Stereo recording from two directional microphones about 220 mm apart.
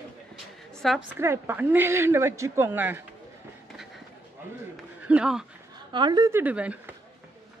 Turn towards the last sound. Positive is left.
turn(degrees=-5)  # may be behind; listen again after turning